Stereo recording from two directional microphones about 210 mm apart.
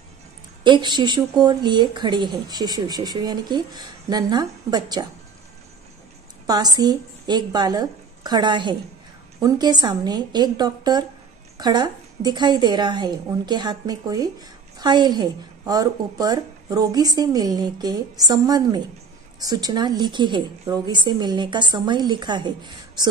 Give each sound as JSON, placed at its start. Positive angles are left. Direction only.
{"t": 0.7, "sound": "speech", "side_deg": -20}
{"t": 6.4, "sound": "speech", "side_deg": -20}